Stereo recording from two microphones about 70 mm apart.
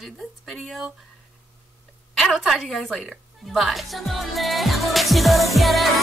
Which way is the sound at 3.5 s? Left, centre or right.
Centre.